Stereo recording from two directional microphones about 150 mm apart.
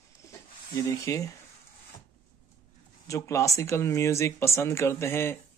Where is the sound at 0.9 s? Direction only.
20° left (ahead or behind).